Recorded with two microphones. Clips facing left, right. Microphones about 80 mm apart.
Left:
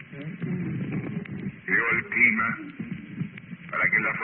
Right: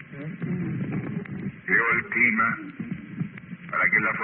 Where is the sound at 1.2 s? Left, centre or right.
Right.